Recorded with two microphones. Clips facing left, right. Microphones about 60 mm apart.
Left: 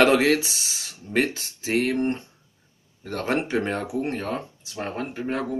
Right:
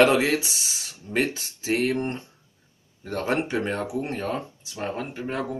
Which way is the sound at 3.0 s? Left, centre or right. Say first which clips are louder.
Even; left.